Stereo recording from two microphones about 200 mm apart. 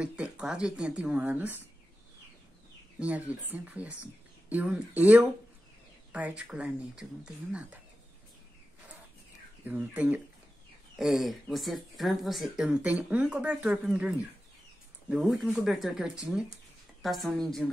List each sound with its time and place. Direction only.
0.0 s speech: 5° right (ahead or behind)
3.0 s speech: 5° right (ahead or behind)
9.7 s speech: 10° right (ahead or behind)